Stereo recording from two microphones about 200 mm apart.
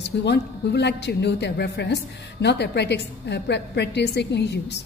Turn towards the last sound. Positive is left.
turn(degrees=60)  # may be behind; listen again after turning